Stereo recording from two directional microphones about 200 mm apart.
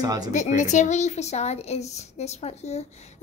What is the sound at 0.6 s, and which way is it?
A woman's voice, 35° left (ahead or behind).